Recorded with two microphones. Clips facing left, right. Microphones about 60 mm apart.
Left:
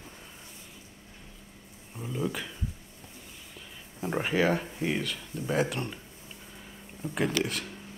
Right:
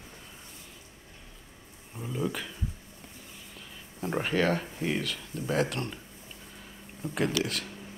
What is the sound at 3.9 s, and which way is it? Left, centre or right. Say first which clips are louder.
Speech: left 1 dB; centre.